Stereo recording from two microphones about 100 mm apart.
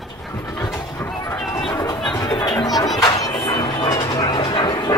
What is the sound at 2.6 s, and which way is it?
Music, 40° left (ahead or behind).